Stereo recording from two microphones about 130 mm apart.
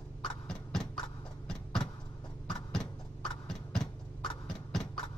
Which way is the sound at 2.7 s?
5° left (ahead or behind).